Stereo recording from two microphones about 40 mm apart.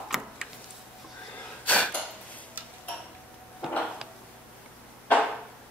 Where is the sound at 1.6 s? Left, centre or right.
Left.